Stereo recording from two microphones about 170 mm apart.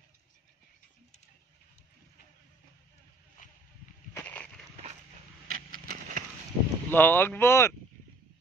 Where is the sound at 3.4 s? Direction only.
55° left (ahead or behind).